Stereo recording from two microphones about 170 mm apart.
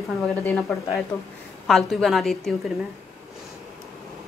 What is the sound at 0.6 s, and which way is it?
A woman's voice, centre (ahead or behind).